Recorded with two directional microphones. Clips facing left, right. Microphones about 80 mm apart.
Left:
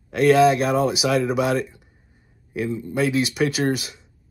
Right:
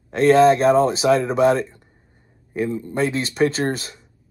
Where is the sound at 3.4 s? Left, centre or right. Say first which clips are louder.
Right 6 dB; right.